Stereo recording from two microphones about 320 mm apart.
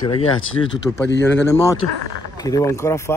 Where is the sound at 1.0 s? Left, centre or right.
Left.